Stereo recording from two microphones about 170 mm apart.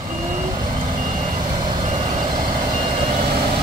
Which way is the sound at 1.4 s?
30° right (ahead or behind).